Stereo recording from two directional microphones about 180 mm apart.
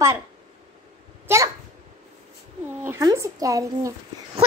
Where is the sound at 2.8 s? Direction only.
15° right (ahead or behind).